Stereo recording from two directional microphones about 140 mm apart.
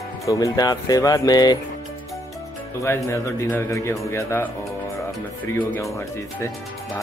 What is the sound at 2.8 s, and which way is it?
A man's voice, 20° left (ahead or behind).